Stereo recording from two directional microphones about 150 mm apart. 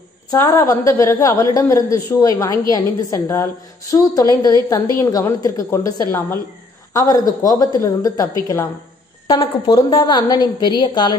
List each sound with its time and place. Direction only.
0.3 s a woman's voice: 20° left (ahead or behind)